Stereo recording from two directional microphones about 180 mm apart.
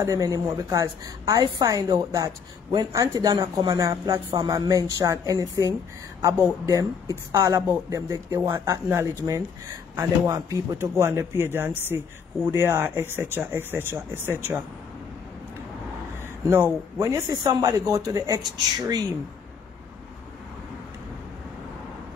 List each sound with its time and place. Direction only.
0.0 s a woman's voice: 20° right (ahead or behind)
16.4 s a woman's voice: 15° right (ahead or behind)